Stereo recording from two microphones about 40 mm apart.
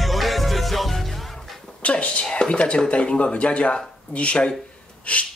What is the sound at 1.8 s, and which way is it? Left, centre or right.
Speech, left.